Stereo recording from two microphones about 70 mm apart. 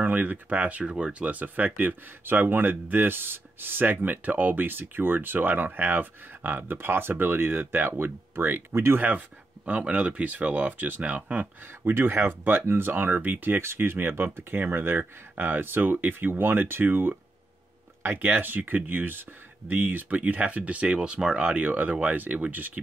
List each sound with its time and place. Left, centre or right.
0.0 s speech: right
9.7 s speech: centre